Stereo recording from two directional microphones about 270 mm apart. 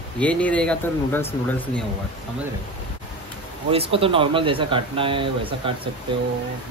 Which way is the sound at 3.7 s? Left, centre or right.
Centre.